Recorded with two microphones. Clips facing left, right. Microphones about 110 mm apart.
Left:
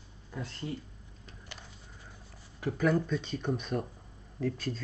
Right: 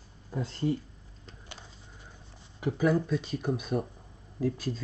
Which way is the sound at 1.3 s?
30° right (ahead or behind).